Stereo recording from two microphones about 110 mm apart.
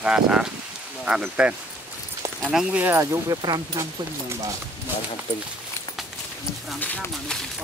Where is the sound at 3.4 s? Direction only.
40° right (ahead or behind).